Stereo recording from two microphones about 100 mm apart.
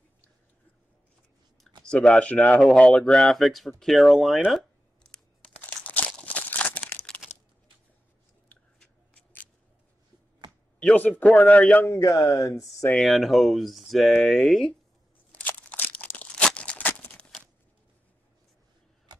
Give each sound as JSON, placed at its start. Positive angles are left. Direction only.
{"t": 1.9, "sound": "speech", "side_deg": 10}
{"t": 5.1, "sound": "a sound", "side_deg": 10}
{"t": 5.9, "sound": "crumpling", "side_deg": 15}
{"t": 7.2, "sound": "a sound", "side_deg": -10}
{"t": 8.7, "sound": "scissors", "side_deg": 10}
{"t": 10.8, "sound": "speech", "side_deg": 10}
{"t": 11.9, "sound": "speech", "side_deg": 35}
{"t": 12.9, "sound": "speech", "side_deg": 0}
{"t": 15.3, "sound": "a sound", "side_deg": 15}